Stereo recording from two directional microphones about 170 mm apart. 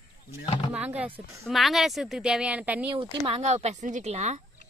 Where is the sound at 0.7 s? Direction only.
10° right (ahead or behind).